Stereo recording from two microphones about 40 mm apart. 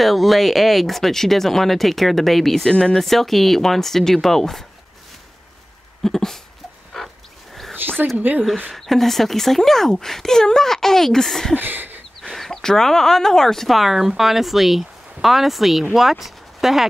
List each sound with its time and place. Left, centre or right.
0.0 s speech: centre
6.0 s speech: centre
6.9 s dog: centre
7.8 s speech: right
8.7 s speech: centre
11.5 s a sound: right
12.2 s speech: centre
13.7 s speech: centre